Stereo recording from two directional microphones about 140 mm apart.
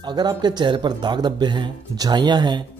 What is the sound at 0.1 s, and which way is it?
A man's voice, 30° right (ahead or behind).